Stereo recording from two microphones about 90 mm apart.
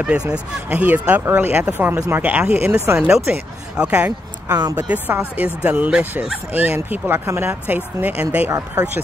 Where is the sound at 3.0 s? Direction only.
10° right (ahead or behind).